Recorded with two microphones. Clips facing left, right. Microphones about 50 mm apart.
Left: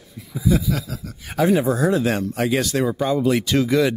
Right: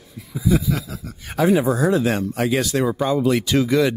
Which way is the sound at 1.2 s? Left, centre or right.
Centre.